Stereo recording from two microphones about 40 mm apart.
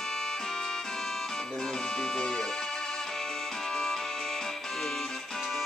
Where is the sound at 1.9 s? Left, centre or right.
Left.